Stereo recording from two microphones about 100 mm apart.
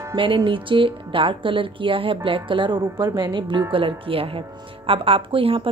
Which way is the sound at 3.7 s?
60° right (ahead or behind).